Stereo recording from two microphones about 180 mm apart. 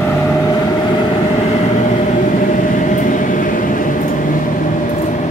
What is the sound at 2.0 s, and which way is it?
Train, 45° left (ahead or behind).